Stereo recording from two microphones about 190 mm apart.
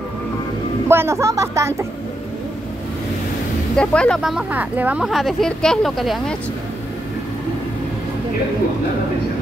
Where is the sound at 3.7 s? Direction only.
5° left (ahead or behind).